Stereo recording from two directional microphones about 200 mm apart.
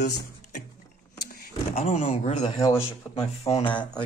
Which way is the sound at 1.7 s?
30° left (ahead or behind).